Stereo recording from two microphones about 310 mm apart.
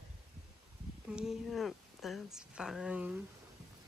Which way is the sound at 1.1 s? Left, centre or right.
Centre.